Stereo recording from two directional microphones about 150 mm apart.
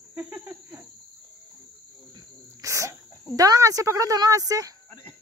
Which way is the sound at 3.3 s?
25° right (ahead or behind).